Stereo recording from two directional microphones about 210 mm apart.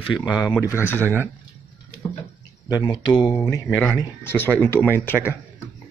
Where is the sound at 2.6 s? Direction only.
20° left (ahead or behind).